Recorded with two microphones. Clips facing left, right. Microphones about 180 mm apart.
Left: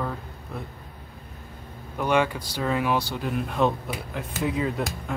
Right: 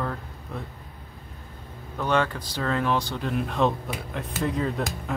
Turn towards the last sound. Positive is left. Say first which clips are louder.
# even
turn(degrees=5)  # may be behind; listen again after turning